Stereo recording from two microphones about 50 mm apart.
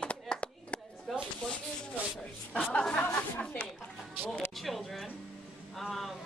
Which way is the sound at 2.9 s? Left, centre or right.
Left.